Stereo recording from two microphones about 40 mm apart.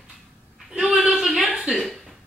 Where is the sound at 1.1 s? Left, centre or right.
Centre.